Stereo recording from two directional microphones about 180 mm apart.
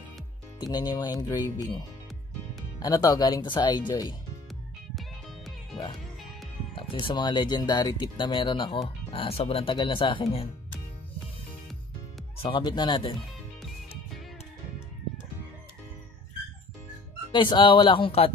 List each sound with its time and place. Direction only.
0.6 s speech: 20° left (ahead or behind)
4.9 s music: centre (ahead or behind)
6.7 s speech: 30° left (ahead or behind)
12.4 s speech: 25° left (ahead or behind)
13.6 s music: centre (ahead or behind)
17.3 s speech: 25° left (ahead or behind)